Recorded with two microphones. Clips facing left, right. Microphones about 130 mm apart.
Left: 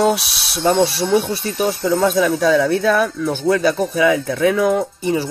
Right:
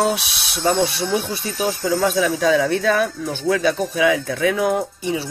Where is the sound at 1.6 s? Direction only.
60° left (ahead or behind).